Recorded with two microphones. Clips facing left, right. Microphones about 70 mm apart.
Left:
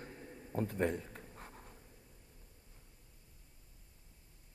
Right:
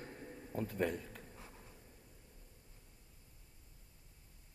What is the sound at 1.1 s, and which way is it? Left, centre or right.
Writing, left.